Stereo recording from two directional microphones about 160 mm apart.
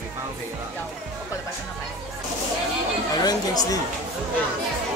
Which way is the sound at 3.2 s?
25° left (ahead or behind).